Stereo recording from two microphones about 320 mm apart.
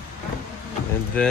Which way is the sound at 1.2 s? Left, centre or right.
Centre.